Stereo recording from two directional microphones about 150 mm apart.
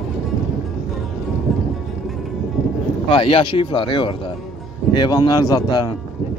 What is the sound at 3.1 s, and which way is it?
A man's voice, 35° left (ahead or behind).